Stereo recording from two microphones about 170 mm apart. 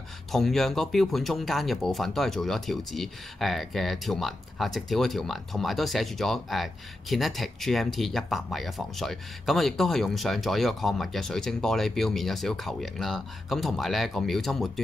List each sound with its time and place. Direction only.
0.3 s speech: centre (ahead or behind)